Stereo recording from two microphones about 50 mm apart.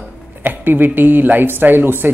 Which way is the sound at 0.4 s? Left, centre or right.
Right.